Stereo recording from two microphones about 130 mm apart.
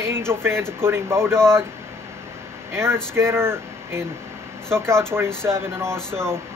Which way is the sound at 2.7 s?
20° right (ahead or behind).